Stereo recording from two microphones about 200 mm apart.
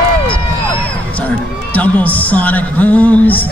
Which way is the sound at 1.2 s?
5° left (ahead or behind).